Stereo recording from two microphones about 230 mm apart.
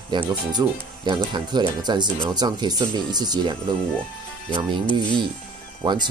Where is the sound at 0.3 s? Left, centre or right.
Centre.